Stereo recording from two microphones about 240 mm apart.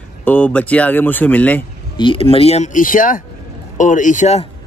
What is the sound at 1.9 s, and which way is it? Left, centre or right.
Speech, left.